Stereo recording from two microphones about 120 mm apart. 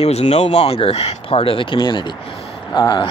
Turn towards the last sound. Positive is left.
turn(degrees=40)  # may be behind; listen again after turning